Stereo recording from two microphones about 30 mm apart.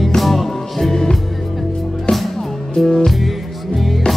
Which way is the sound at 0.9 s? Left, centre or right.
Centre.